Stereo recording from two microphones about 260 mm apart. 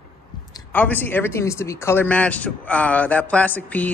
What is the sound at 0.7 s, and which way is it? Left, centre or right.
Speech, centre.